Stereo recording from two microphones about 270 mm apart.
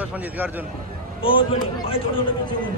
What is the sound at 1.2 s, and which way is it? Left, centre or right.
Speech, centre.